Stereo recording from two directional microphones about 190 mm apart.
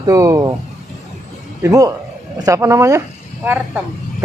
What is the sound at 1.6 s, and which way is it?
Speech, 15° right (ahead or behind).